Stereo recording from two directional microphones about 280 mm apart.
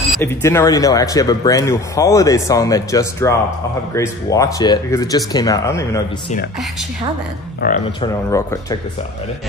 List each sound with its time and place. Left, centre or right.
0.2 s speech: centre
7.6 s speech: left